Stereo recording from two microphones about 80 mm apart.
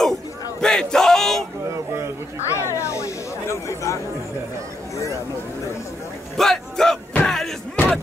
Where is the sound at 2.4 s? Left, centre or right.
Left.